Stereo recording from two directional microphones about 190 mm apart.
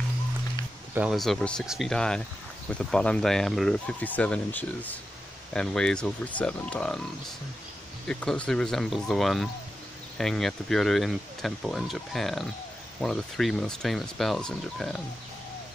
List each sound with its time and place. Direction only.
0.9 s speech: centre (ahead or behind)
8.1 s speech: 5° left (ahead or behind)